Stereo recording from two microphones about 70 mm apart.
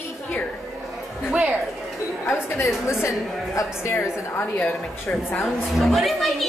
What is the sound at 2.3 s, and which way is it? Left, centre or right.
A woman's voice, left.